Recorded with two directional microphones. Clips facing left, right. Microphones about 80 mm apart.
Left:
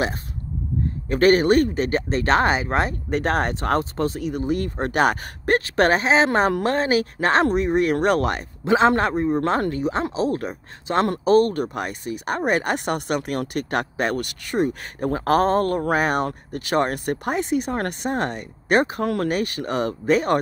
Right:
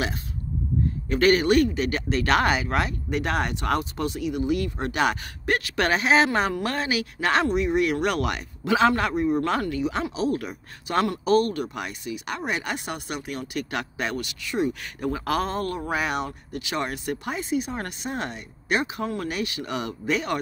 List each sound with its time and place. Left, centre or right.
1.0 s speech: left